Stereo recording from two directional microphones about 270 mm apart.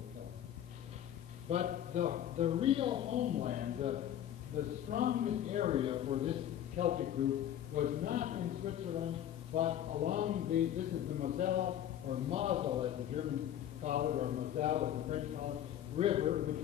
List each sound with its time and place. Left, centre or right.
1.5 s a man's voice: right